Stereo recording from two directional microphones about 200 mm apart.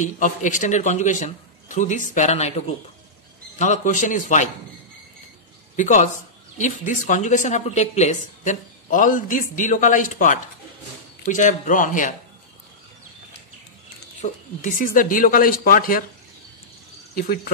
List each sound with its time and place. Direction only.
0.0 s a woman's voice: 40° left (ahead or behind)
5.8 s a woman's voice: 40° left (ahead or behind)
14.2 s speech: 40° left (ahead or behind)